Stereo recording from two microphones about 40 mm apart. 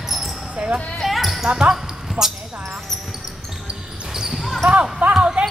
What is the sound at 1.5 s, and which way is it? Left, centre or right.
Speech, right.